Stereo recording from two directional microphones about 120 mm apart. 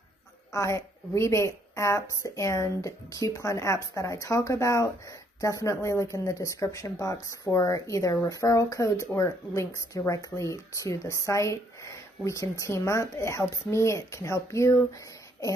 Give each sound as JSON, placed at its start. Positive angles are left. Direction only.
{"t": 0.5, "sound": "a woman's voice", "side_deg": 25}